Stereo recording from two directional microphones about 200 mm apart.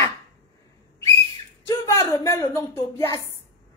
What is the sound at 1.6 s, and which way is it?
A woman's voice, 15° left (ahead or behind).